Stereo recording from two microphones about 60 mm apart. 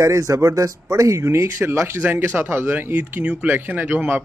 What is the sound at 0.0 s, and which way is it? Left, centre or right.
Speech, right.